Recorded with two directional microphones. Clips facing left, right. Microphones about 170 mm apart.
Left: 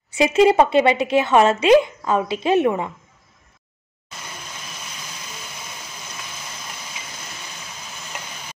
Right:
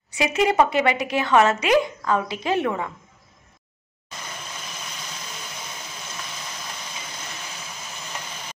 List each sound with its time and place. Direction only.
0.1 s speech: 25° left (ahead or behind)